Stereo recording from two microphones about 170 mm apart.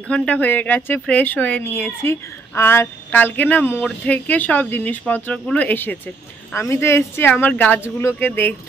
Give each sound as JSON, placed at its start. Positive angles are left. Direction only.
{"t": 0.1, "sound": "speech", "side_deg": 5}